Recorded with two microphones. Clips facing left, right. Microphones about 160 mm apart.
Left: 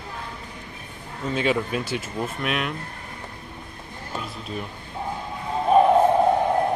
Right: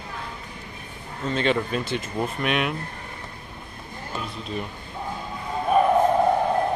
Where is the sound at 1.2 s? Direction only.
10° left (ahead or behind).